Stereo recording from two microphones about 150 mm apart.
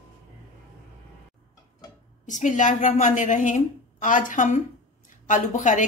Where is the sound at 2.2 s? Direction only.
55° left (ahead or behind).